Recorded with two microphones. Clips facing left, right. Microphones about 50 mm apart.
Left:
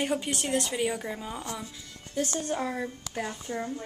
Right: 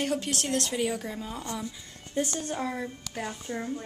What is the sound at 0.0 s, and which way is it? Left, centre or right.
A woman's voice, centre.